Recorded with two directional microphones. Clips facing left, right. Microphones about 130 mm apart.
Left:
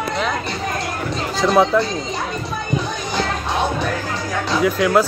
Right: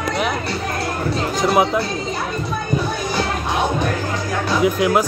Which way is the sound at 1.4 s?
10° right (ahead or behind).